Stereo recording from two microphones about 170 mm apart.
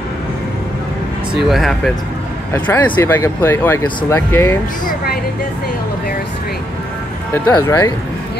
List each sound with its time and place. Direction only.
1.3 s speech: centre (ahead or behind)
2.5 s speech: 10° left (ahead or behind)
4.8 s a sound: 60° left (ahead or behind)
7.5 s speech: 20° left (ahead or behind)